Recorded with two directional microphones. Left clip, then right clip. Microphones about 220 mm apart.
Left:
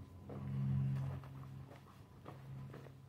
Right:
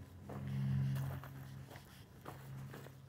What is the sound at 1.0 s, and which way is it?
Music, 55° right (ahead or behind).